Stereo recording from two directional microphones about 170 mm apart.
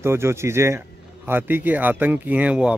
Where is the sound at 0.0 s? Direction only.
15° right (ahead or behind).